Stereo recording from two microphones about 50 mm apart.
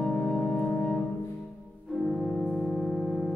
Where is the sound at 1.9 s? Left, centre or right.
Centre.